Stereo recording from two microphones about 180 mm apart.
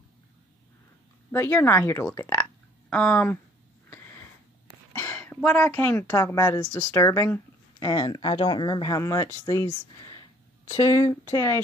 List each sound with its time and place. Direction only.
1.3 s speech: 10° left (ahead or behind)
3.9 s sniff: 10° left (ahead or behind)
4.9 s a woman's voice: 15° left (ahead or behind)